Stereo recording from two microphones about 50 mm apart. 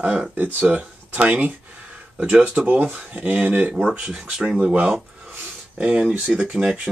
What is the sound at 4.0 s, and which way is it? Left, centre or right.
Speech, centre.